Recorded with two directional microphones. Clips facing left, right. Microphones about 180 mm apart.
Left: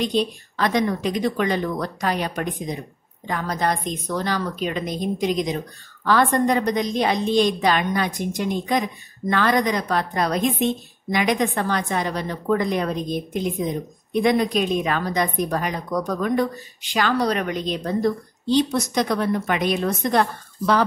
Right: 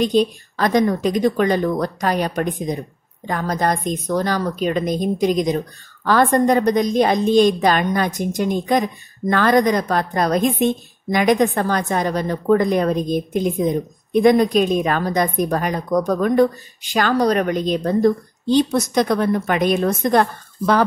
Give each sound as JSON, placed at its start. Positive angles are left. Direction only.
{"t": 0.0, "sound": "a woman's voice", "side_deg": -45}